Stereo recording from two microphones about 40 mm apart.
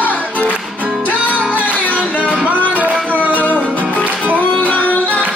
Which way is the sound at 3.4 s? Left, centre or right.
Left.